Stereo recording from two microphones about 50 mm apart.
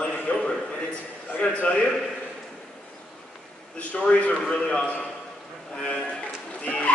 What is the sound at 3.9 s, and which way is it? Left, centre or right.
A man's voice, left.